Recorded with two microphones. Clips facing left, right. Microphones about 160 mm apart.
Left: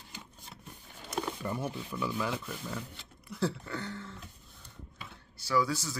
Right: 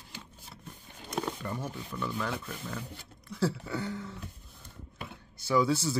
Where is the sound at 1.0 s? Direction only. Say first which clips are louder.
Right 1 dB; 10° left (ahead or behind); by 4.1 s 10° right (ahead or behind).